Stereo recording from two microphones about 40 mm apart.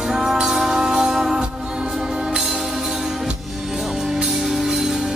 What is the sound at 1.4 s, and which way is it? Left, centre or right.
Music, right.